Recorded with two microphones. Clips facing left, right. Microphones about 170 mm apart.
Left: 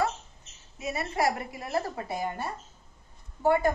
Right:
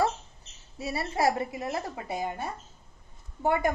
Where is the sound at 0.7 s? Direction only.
35° right (ahead or behind).